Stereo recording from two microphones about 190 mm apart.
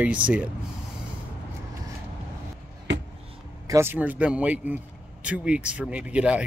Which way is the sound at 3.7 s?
10° right (ahead or behind).